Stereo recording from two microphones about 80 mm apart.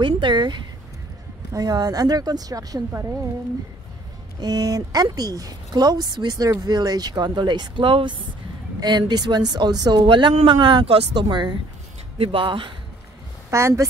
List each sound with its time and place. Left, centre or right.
0.0 s speech: right
1.5 s speech: right
2.9 s a woman's voice: right
4.4 s speech: right
8.7 s speech: right
12.4 s speech: right
13.5 s speech: right